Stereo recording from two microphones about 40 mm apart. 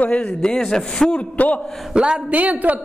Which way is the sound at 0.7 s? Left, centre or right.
Centre.